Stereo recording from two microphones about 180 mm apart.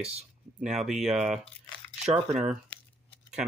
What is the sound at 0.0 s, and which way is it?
Speech, 35° right (ahead or behind).